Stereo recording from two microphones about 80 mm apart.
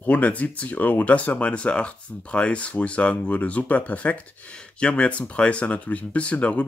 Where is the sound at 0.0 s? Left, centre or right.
Centre.